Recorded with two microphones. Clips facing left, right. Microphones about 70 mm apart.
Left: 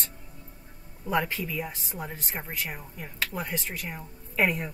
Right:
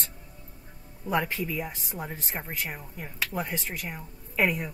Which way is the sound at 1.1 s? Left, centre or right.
Centre.